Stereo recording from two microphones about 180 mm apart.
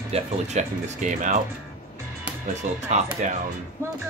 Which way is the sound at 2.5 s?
40° right (ahead or behind).